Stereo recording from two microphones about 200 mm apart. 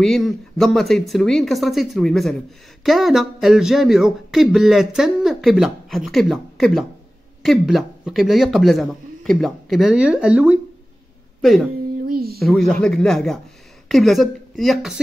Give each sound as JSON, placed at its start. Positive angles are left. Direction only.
{"t": 0.0, "sound": "speech", "side_deg": 0}
{"t": 12.1, "sound": "a sound", "side_deg": -50}
{"t": 12.4, "sound": "a woman's voice", "side_deg": 0}